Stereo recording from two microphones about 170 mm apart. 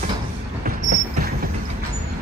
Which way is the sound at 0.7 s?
55° right (ahead or behind).